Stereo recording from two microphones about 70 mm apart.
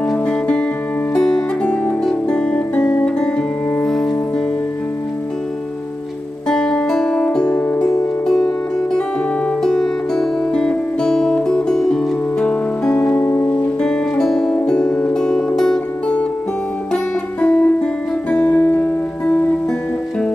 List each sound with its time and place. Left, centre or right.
0.1 s music: centre
2.8 s guitar: left
3.8 s music: centre
6.5 s music: centre
9.6 s music: centre
13.1 s music: left
13.8 s music: centre
17.4 s music: centre